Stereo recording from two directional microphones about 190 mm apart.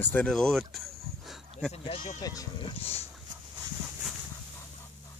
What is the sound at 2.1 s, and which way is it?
Speech, 20° left (ahead or behind).